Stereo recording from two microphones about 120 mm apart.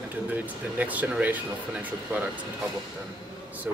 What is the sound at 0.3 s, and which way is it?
Speech, 15° right (ahead or behind).